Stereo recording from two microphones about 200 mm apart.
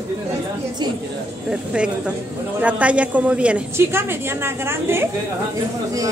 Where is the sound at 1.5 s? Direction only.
5° right (ahead or behind).